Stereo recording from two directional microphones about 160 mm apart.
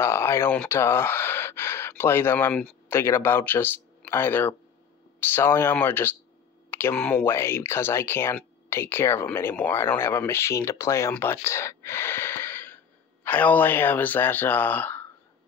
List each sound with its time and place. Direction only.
0.0 s speech: 15° left (ahead or behind)